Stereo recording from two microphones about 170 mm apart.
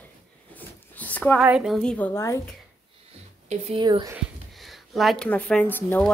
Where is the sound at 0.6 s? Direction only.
10° left (ahead or behind).